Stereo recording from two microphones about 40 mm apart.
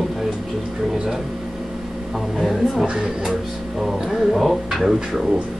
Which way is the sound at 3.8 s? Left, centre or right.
Centre.